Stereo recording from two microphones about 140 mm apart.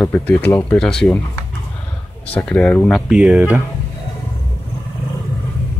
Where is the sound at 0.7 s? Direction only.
5° left (ahead or behind).